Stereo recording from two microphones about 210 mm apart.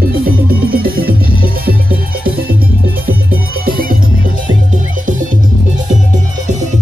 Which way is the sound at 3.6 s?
45° right (ahead or behind).